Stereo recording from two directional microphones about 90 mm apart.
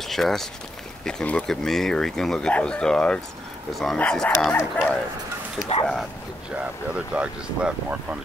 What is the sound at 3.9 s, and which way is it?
Speech, 15° left (ahead or behind).